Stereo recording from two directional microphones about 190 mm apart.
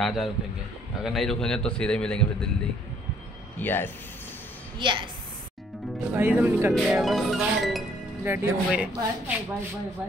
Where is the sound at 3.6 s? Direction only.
10° left (ahead or behind).